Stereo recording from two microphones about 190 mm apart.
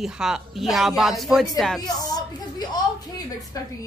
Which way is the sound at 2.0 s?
20° left (ahead or behind).